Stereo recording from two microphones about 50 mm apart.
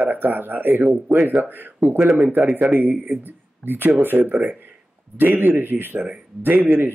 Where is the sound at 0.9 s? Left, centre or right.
Centre.